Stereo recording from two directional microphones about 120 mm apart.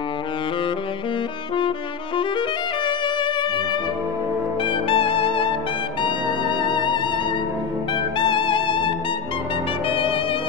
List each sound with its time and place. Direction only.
2.8 s music: 40° left (ahead or behind)
4.6 s music: 50° left (ahead or behind)
8.2 s music: 45° left (ahead or behind)